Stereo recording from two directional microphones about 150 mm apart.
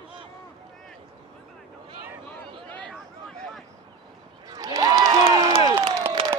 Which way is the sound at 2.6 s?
10° left (ahead or behind).